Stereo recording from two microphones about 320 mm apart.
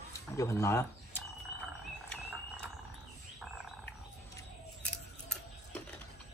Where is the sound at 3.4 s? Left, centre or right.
Centre.